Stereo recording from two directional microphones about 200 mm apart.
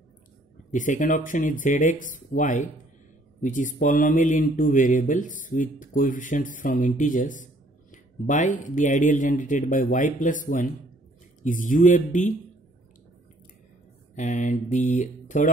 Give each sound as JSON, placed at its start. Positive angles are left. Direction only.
{"t": 0.7, "sound": "speech", "side_deg": 40}
{"t": 14.1, "sound": "speech", "side_deg": 40}